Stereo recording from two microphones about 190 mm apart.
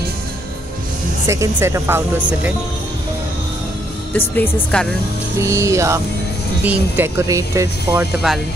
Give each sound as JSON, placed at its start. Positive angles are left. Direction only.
{"t": 1.2, "sound": "speech", "side_deg": -15}
{"t": 4.4, "sound": "speech", "side_deg": 5}
{"t": 5.4, "sound": "speech", "side_deg": -15}